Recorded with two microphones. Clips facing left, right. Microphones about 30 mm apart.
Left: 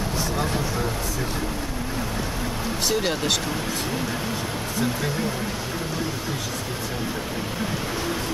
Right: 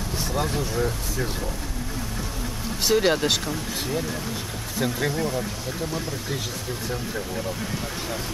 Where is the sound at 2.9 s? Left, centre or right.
Centre.